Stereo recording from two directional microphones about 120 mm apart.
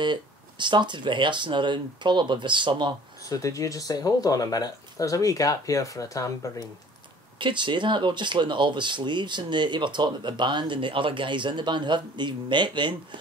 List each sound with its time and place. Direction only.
0.0 s speech: 40° right (ahead or behind)
3.3 s speech: 30° left (ahead or behind)
7.3 s speech: 40° right (ahead or behind)